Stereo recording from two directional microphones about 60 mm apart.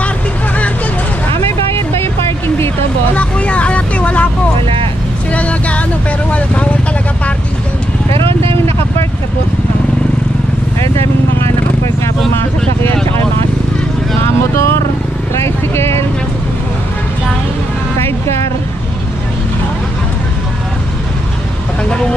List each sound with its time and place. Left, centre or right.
3.2 s vehicle: left
5.3 s a sound: left
6.3 s vehicle: left
14.2 s vehicle: left
17.9 s music: left